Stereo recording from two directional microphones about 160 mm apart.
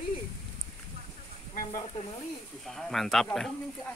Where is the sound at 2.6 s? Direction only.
Centre (ahead or behind).